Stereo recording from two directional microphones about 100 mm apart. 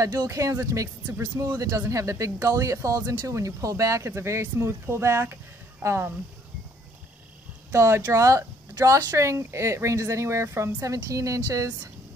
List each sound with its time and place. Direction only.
0.0 s speech: 35° right (ahead or behind)
7.7 s speech: 25° right (ahead or behind)